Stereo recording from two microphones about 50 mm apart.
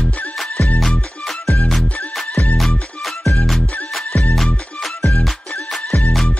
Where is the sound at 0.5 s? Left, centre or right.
Left.